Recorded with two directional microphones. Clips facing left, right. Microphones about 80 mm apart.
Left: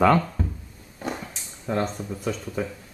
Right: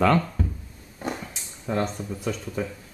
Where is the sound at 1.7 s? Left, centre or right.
Centre.